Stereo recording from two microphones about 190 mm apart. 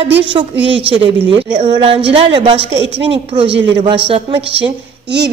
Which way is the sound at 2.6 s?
65° right (ahead or behind).